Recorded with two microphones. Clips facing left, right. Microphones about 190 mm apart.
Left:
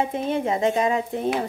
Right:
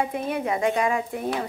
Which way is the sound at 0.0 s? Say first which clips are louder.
Left 2 dB; 25° left (ahead or behind).